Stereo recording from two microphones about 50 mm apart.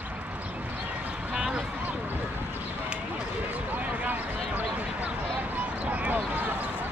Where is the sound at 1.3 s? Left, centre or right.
Centre.